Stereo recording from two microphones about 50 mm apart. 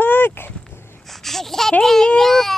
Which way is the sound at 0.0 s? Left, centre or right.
Left.